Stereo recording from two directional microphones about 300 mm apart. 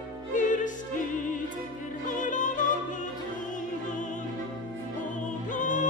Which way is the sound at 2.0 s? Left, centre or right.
Left.